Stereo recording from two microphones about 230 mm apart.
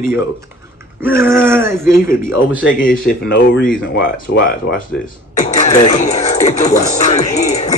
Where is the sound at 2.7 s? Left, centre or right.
Left.